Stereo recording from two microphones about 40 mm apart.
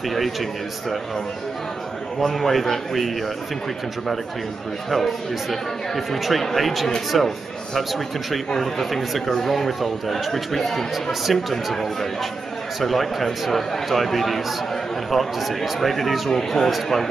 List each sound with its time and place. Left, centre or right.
0.1 s speech: centre
2.1 s speech: centre
4.9 s speech: centre